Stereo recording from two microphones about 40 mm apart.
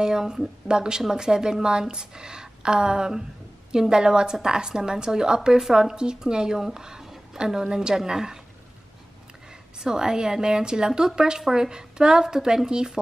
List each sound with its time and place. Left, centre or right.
0.0 s a woman's voice: centre
9.8 s a woman's voice: centre